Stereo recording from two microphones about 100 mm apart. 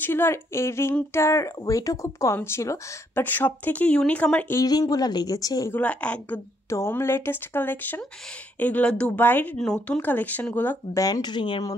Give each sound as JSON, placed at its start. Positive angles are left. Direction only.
{"t": 0.0, "sound": "speech", "side_deg": 20}
{"t": 3.3, "sound": "speech", "side_deg": 20}
{"t": 4.6, "sound": "speech", "side_deg": 40}
{"t": 5.7, "sound": "speech", "side_deg": 15}
{"t": 6.7, "sound": "speech", "side_deg": 25}
{"t": 9.6, "sound": "speech", "side_deg": 10}
{"t": 11.0, "sound": "speech", "side_deg": 40}